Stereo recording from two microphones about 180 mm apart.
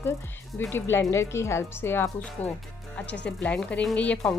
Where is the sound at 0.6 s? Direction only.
10° left (ahead or behind).